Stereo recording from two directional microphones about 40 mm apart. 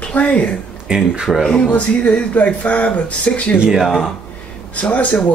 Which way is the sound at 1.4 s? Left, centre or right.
Centre.